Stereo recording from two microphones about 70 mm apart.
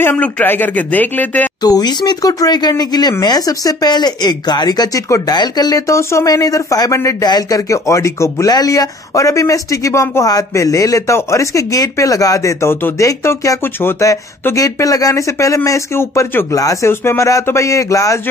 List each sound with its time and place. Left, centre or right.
0.0 s speech: left
1.6 s speech: left
6.2 s speech: left
7.2 s speech: left
8.5 s speech: left
13.2 s speech: left
14.5 s speech: left
16.5 s speech: left
17.0 s speech: left
17.6 s speech: left